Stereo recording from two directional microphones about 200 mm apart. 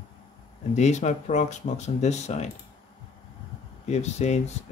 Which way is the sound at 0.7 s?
35° left (ahead or behind).